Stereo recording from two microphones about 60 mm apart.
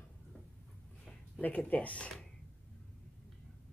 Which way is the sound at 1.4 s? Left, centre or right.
Left.